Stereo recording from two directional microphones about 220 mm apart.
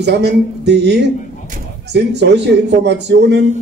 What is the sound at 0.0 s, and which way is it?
A man's voice, 50° right (ahead or behind).